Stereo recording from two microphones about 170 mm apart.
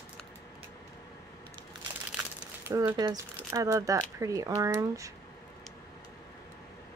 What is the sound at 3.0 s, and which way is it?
Speech, 20° right (ahead or behind).